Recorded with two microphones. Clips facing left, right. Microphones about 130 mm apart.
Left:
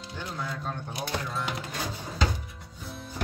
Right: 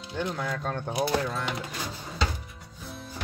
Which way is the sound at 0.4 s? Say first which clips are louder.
Right 3 dB; 60° right (ahead or behind).